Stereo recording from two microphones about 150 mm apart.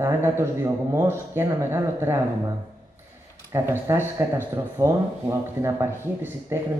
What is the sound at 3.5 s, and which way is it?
Speech, 15° right (ahead or behind).